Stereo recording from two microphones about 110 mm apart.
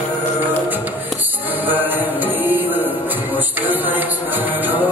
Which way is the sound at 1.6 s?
15° right (ahead or behind).